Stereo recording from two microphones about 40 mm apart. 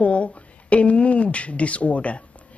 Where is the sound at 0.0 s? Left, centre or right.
Left.